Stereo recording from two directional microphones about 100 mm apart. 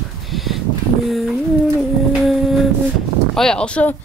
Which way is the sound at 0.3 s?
Centre (ahead or behind).